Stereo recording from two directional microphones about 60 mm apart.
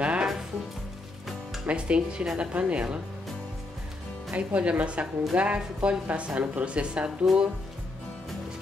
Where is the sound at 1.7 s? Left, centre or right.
Centre.